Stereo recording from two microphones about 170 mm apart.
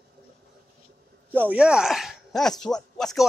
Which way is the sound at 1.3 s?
10° right (ahead or behind).